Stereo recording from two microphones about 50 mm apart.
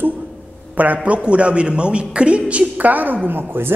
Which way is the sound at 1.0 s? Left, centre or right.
Right.